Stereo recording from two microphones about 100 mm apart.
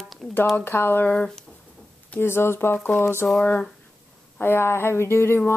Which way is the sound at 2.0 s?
25° left (ahead or behind).